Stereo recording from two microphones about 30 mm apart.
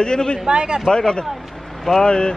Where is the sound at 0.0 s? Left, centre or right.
Left.